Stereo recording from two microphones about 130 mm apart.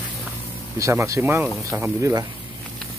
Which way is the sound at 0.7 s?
25° right (ahead or behind).